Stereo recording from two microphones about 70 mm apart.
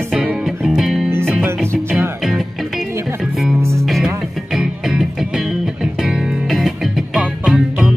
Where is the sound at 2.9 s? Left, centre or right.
Right.